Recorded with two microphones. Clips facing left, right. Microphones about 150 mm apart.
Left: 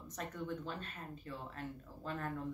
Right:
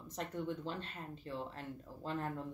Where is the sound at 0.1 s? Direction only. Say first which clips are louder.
Right 2 dB; 25° right (ahead or behind).